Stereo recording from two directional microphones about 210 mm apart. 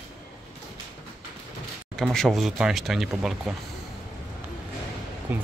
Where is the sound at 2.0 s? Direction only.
Centre (ahead or behind).